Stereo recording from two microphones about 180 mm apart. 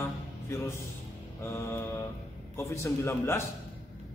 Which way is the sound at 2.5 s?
15° left (ahead or behind).